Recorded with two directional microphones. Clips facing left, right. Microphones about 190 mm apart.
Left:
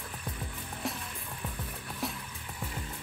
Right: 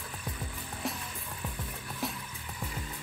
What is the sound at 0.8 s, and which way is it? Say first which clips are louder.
Music: even; centre (ahead or behind).